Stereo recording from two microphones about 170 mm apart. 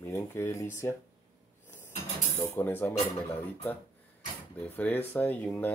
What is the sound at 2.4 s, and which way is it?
Speech, 10° left (ahead or behind).